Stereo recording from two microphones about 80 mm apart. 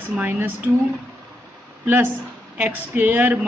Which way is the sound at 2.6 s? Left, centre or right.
Right.